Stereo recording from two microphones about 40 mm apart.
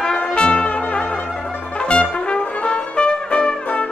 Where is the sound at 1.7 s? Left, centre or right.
Left.